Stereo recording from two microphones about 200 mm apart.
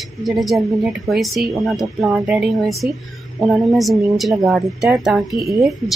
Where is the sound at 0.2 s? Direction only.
Centre (ahead or behind).